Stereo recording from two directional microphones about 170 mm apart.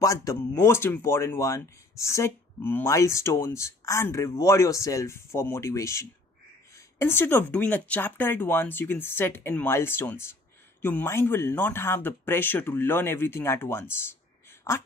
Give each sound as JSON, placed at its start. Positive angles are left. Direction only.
{"t": 0.0, "sound": "speech", "side_deg": 20}